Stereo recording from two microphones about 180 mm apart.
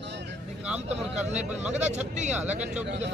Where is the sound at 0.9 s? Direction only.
40° right (ahead or behind).